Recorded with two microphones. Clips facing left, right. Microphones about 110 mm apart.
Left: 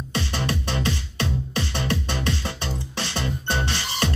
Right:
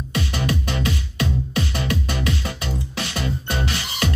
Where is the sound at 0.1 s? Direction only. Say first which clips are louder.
Right 3 dB; 30° left (ahead or behind).